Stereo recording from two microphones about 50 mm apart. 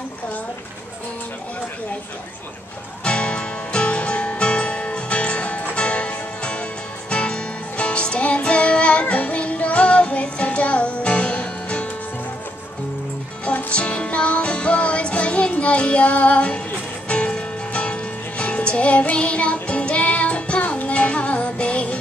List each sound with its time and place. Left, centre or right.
3.0 s music: left
13.5 s music: left